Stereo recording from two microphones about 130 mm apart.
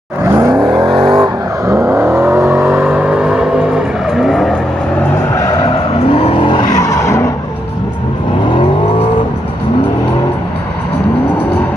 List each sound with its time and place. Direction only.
0.3 s vehicle: 25° right (ahead or behind)
0.7 s vehicle: 35° right (ahead or behind)
1.7 s vehicle: 15° right (ahead or behind)
5.7 s vehicle: 50° left (ahead or behind); by 7.2 s 25° left (ahead or behind)